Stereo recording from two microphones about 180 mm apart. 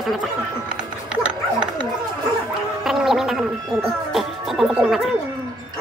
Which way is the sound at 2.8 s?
Centre (ahead or behind).